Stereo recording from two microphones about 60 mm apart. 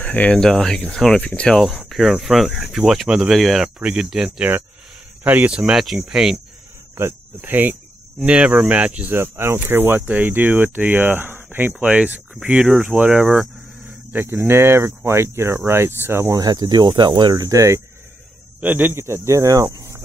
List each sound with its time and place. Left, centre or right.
0.0 s speech: left
0.4 s speech: centre
1.2 s speech: left
1.5 s speech: centre
3.6 s speech: centre
5.2 s speech: right
5.6 s speech: centre
7.0 s speech: right
8.3 s speech: centre
9.1 s speech: right
14.1 s speech: right
17.1 s speech: right
18.6 s speech: right